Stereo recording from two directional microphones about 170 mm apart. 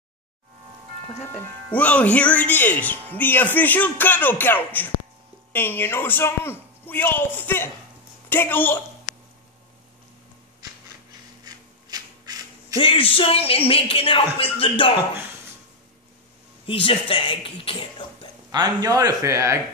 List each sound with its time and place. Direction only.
1.2 s speech: 15° left (ahead or behind)
11.4 s a sound: 20° right (ahead or behind)
12.7 s speech: 30° left (ahead or behind)
16.6 s speech: 30° left (ahead or behind)
18.5 s speech: 25° right (ahead or behind)